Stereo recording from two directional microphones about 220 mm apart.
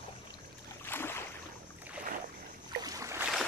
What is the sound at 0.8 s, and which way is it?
Boat, 10° left (ahead or behind).